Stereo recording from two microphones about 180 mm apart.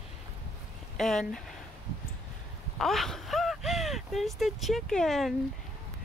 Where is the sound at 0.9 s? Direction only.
Centre (ahead or behind).